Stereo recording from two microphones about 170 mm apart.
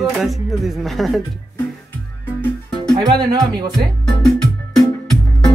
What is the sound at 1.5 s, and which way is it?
Music, 10° left (ahead or behind).